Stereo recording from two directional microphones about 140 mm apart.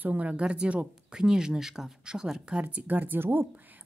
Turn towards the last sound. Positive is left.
turn(degrees=-10)  # may be behind; listen again after turning